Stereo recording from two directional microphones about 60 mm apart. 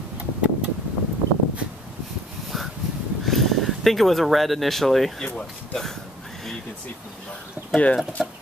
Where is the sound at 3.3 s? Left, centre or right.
Centre.